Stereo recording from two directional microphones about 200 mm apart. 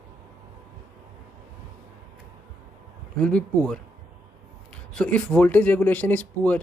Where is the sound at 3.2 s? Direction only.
5° left (ahead or behind).